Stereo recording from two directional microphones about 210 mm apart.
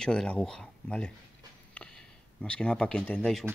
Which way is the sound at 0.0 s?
5° left (ahead or behind).